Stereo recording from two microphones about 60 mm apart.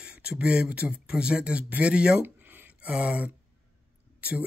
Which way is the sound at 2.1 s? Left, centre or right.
Right.